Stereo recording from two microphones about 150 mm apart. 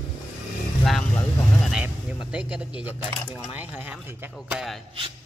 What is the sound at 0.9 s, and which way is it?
A man's voice, 5° left (ahead or behind).